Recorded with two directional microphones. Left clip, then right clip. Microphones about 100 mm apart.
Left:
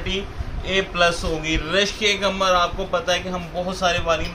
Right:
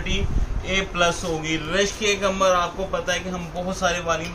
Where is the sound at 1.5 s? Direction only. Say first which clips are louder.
Left 3 dB; 50° left (ahead or behind).